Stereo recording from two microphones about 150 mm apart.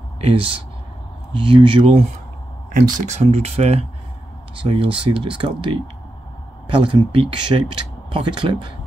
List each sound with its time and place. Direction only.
0.2 s speech: 35° right (ahead or behind)
2.7 s speech: 50° right (ahead or behind)
6.8 s speech: 35° right (ahead or behind)